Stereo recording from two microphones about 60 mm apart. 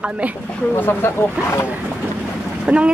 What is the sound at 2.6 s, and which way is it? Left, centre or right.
Speech, centre.